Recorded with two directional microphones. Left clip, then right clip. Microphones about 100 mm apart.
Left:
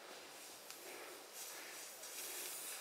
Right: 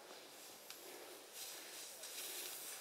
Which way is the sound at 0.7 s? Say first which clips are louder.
Left 2 dB; 5° left (ahead or behind).